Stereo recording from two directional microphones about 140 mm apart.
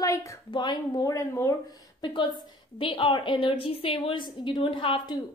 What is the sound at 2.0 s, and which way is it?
A woman's voice, 35° left (ahead or behind).